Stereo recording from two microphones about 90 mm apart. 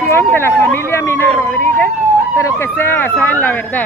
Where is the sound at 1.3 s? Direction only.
20° left (ahead or behind).